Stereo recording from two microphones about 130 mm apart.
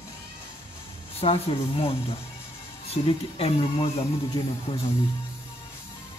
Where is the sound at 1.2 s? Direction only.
45° left (ahead or behind).